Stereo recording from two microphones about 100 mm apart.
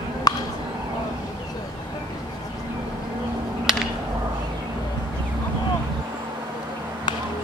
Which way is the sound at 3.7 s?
5° right (ahead or behind).